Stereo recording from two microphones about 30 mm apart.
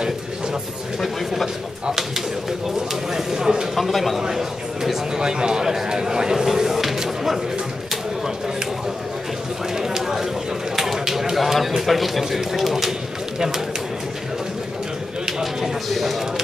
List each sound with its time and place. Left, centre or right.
3.1 s speech: centre
3.7 s a man's voice: centre
5.1 s speech: right
9.8 s a man's voice: centre
15.9 s a man's voice: centre